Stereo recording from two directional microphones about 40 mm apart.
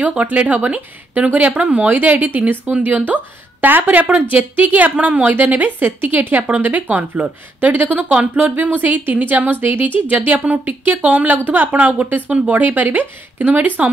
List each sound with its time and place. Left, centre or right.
0.2 s speech: right
1.6 s speech: right
5.3 s speech: right
6.7 s speech: right
8.1 s speech: right